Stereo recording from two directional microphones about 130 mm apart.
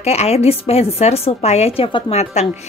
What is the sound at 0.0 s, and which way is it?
Speech, 55° left (ahead or behind).